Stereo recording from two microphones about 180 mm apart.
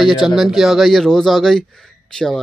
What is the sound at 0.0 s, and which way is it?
A man's voice, centre (ahead or behind).